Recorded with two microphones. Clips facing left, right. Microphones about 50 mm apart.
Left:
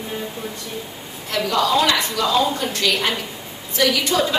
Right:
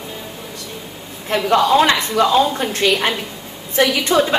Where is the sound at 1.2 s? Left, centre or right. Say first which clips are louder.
Right 5 dB; right.